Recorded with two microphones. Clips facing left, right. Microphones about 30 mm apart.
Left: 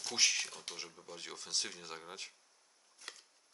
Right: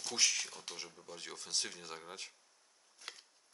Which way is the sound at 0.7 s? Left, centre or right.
Centre.